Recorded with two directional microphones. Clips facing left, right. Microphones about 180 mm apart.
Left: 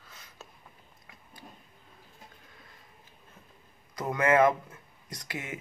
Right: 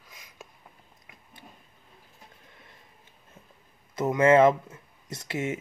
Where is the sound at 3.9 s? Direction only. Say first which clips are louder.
Right 5 dB; 25° right (ahead or behind).